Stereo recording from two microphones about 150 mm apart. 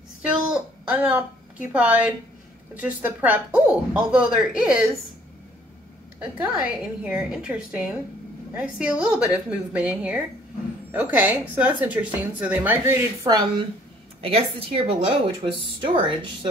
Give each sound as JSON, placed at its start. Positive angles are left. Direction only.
{"t": 0.3, "sound": "a woman's voice", "side_deg": -5}
{"t": 6.1, "sound": "a woman's voice", "side_deg": -10}
{"t": 14.2, "sound": "a woman's voice", "side_deg": -40}